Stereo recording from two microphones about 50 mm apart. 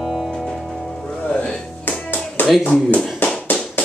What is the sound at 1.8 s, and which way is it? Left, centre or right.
Clapping, left.